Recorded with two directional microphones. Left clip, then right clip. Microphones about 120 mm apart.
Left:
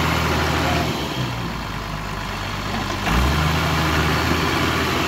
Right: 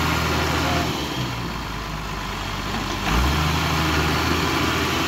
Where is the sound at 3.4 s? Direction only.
5° left (ahead or behind).